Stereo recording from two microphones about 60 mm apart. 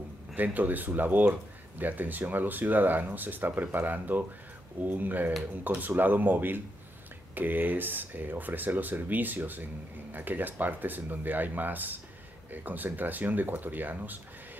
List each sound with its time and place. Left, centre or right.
0.3 s speech: right